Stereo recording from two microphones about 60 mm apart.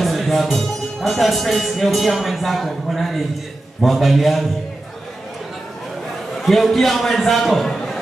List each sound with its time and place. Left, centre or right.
0.0 s speech: centre
6.3 s a man's voice: centre